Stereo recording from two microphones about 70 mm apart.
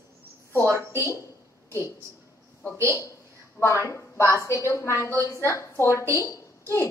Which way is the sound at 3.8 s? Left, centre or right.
Left.